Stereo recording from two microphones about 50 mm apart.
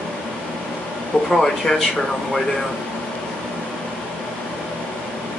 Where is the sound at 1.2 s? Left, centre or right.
Centre.